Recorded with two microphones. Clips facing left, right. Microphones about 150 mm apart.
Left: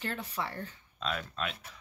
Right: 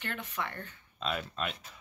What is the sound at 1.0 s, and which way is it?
Speech, 5° right (ahead or behind).